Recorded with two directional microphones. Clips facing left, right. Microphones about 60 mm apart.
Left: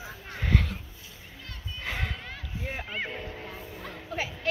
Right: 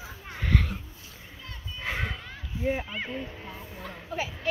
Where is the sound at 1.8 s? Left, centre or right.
Centre.